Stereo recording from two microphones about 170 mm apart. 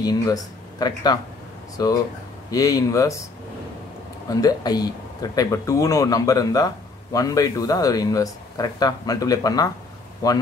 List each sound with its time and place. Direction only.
0.0 s speech: 20° left (ahead or behind)
4.3 s speech: 20° left (ahead or behind)